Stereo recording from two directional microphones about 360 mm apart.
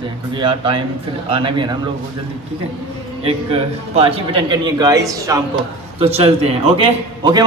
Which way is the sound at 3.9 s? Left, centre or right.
Centre.